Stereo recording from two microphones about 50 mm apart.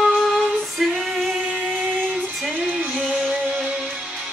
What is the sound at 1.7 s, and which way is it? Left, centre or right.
Music, right.